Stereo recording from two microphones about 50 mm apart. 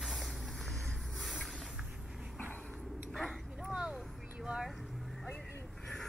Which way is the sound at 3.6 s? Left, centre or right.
Centre.